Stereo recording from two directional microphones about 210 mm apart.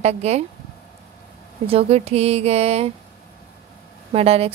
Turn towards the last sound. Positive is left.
turn(degrees=-30)  # may be behind; listen again after turning